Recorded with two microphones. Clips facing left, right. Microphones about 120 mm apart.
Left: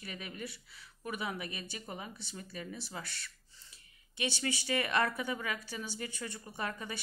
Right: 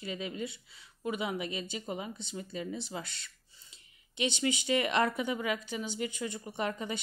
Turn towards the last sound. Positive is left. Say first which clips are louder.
# right 5 dB
turn(degrees=-20)  # may be behind; listen again after turning